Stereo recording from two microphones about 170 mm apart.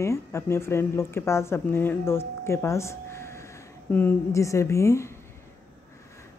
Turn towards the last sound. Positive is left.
turn(degrees=15)  # may be behind; listen again after turning